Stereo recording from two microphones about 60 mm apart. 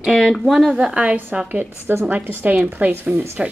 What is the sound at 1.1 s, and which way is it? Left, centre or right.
Speech, right.